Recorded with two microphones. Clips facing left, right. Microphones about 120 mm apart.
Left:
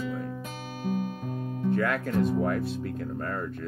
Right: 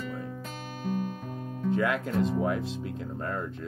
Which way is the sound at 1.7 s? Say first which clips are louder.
Even; 15° right (ahead or behind).